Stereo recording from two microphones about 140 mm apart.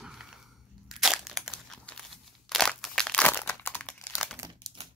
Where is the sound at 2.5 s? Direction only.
5° left (ahead or behind).